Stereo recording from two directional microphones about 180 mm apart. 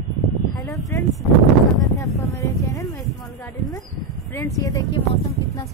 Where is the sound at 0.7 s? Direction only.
15° left (ahead or behind).